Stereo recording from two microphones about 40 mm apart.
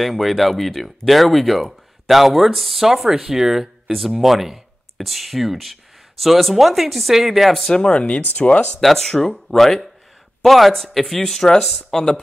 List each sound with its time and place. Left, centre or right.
0.0 s speech: centre
7.7 s speech: left
8.8 s speech: centre